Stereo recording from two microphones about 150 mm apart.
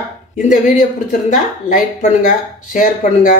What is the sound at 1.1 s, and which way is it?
Speech, 60° left (ahead or behind).